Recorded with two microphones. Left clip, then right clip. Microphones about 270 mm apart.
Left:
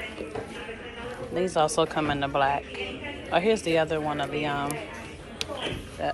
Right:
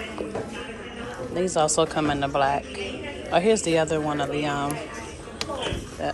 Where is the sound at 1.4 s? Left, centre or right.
Centre.